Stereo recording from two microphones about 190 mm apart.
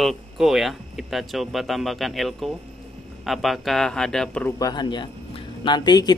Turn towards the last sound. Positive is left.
turn(degrees=20)  # may be behind; listen again after turning